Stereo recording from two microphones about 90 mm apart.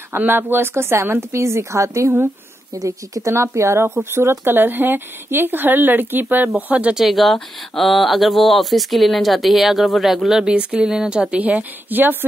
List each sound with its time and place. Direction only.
0.1 s speech: 20° right (ahead or behind)